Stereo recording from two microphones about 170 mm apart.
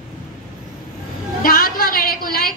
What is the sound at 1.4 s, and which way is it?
A woman's voice, 60° left (ahead or behind).